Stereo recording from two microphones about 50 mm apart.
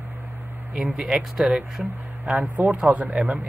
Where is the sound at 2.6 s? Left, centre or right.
Right.